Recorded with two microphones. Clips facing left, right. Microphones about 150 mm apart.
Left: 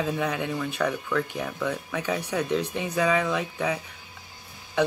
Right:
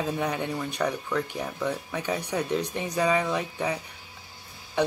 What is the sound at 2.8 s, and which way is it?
Speech, 35° right (ahead or behind).